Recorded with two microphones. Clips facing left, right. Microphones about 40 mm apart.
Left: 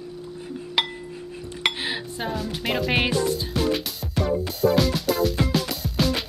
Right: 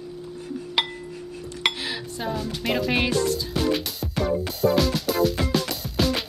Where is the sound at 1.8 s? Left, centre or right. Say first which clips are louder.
Left 2 dB; left.